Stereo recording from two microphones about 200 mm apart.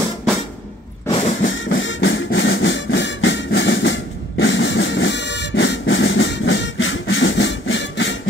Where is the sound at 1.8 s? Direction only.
70° left (ahead or behind).